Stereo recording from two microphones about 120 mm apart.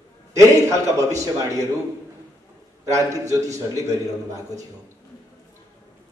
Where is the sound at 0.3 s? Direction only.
25° right (ahead or behind).